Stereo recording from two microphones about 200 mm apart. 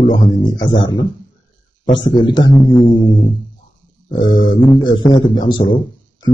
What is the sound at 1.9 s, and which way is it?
Speech, 20° left (ahead or behind).